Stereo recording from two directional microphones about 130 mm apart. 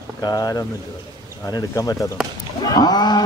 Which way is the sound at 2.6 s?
30° left (ahead or behind).